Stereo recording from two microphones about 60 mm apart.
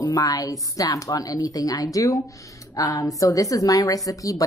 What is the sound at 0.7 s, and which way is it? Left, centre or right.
Speech, left.